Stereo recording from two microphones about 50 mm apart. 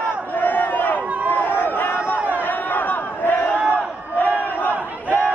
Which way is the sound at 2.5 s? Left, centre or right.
Left.